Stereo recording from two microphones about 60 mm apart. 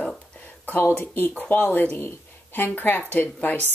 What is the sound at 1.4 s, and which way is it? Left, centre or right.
Speech, left.